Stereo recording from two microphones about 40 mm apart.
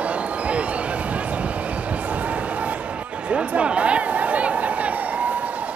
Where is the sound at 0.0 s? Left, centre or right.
Right.